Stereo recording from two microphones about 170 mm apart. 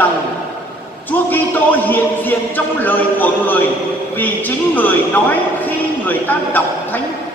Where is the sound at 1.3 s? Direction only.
10° left (ahead or behind).